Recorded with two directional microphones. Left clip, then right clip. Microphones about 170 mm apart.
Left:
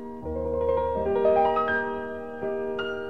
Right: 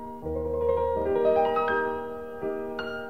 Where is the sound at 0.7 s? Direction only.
30° left (ahead or behind).